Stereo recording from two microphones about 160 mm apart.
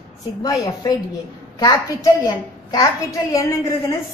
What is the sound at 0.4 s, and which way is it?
A woman's voice, 25° left (ahead or behind).